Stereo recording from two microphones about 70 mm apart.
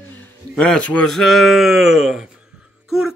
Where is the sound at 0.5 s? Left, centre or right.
Centre.